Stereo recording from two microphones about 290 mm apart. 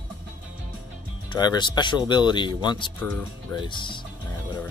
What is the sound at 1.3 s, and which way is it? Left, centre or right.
Speech, centre.